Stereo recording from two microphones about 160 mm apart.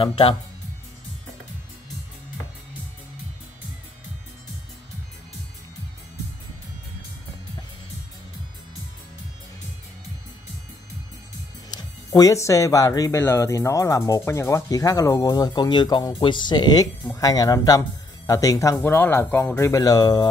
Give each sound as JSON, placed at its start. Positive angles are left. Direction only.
{"t": 0.0, "sound": "speech", "side_deg": 35}
{"t": 11.7, "sound": "speech", "side_deg": 20}